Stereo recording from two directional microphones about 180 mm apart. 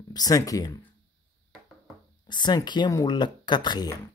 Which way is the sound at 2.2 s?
25° left (ahead or behind).